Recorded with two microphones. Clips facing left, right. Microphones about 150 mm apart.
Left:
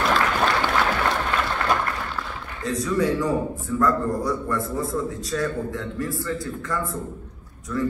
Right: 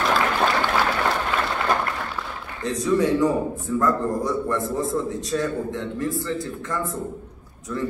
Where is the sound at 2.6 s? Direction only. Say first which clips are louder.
Right 2 dB; 25° right (ahead or behind).